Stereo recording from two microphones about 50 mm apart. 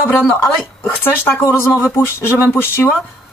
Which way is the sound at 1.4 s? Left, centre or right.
Left.